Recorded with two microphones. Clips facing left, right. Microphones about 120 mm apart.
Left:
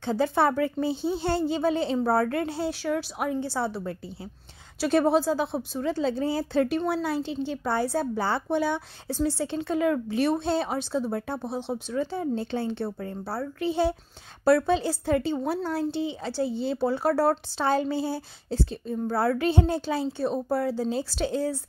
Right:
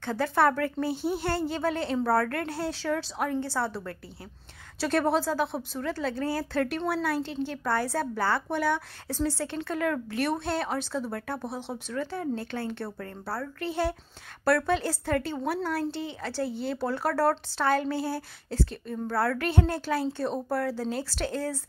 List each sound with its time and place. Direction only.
0.0 s a woman's voice: 20° left (ahead or behind)